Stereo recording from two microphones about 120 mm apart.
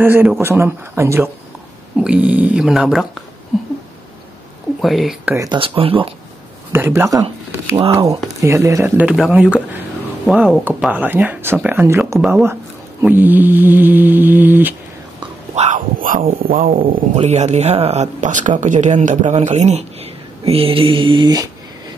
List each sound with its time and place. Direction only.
0.0 s speech: 15° right (ahead or behind)
2.0 s speech: 10° right (ahead or behind)
4.8 s speech: centre (ahead or behind)
5.6 s speech: 50° right (ahead or behind)
6.7 s speech: 20° right (ahead or behind)
15.5 s speech: 80° right
16.2 s speech: 55° right (ahead or behind); by 21.5 s 35° right (ahead or behind)